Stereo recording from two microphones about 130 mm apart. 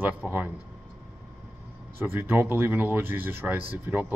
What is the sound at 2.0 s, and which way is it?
Speech, 15° right (ahead or behind).